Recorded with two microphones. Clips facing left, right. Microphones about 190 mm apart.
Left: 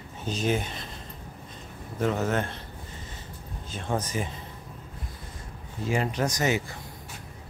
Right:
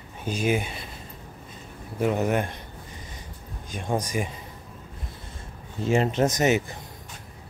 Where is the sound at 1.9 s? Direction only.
15° right (ahead or behind).